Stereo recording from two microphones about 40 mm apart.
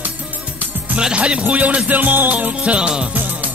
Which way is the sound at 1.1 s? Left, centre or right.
Right.